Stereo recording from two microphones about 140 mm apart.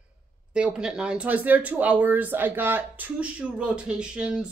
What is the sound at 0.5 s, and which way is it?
Speech, 5° right (ahead or behind).